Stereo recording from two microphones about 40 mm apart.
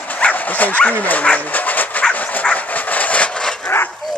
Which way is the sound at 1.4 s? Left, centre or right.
Left.